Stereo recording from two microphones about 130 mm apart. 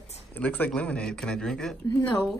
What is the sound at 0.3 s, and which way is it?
Speech, 15° left (ahead or behind).